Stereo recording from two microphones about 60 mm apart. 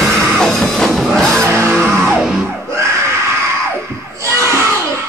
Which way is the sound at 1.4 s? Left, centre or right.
Right.